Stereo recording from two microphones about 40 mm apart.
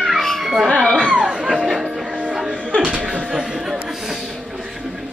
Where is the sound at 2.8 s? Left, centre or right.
Right.